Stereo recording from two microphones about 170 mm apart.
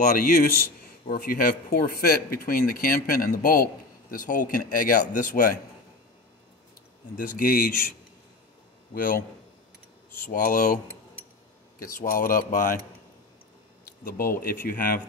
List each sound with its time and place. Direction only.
0.0 s a man's voice: 50° left (ahead or behind)
7.2 s a man's voice: 55° left (ahead or behind)
8.9 s a man's voice: 55° left (ahead or behind)
10.2 s a man's voice: 55° left (ahead or behind)
12.0 s a man's voice: 55° left (ahead or behind)
13.8 s a sound: 55° left (ahead or behind)
14.4 s a man's voice: 55° left (ahead or behind)